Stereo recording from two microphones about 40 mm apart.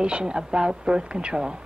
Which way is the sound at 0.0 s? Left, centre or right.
Right.